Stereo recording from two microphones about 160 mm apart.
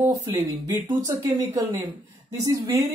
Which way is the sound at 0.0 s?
20° right (ahead or behind).